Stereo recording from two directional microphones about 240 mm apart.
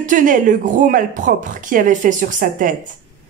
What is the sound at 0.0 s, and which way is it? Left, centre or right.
Speech, right.